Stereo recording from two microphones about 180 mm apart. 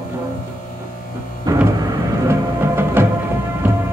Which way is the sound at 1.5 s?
20° right (ahead or behind).